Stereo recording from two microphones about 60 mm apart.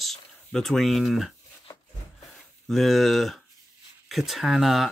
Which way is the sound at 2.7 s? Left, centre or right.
Centre.